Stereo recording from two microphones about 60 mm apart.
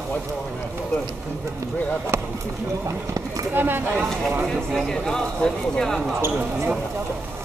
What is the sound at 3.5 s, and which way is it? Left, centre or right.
Speech, right.